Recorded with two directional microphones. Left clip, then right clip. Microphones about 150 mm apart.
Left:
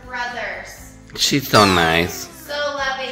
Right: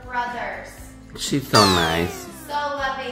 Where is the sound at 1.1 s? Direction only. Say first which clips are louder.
Left 5 dB; 25° left (ahead or behind).